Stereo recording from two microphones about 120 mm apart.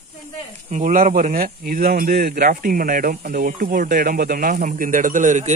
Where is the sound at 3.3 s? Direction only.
90° right.